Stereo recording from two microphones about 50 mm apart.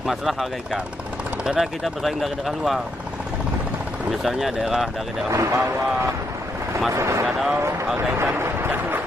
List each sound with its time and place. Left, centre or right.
0.0 s speech: centre
1.6 s speech: centre
4.1 s speech: centre
5.3 s speech: right
7.2 s speech: centre
8.2 s speech: right